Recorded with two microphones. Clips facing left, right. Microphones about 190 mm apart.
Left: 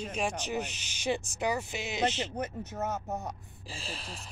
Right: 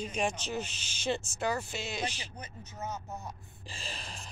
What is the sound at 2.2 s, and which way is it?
Speech, 65° left (ahead or behind).